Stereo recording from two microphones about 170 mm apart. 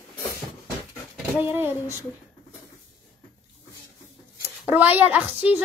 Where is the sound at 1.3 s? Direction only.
10° right (ahead or behind).